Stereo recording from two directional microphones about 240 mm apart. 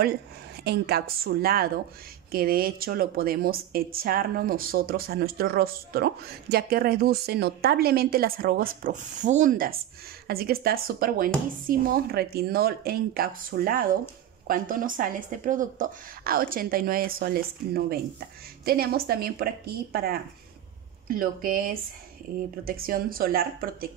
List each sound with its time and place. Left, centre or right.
0.7 s a woman's voice: right